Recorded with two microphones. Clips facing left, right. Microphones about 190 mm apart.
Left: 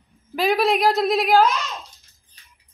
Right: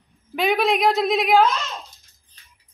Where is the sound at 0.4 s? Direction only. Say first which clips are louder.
Left 1 dB; centre (ahead or behind).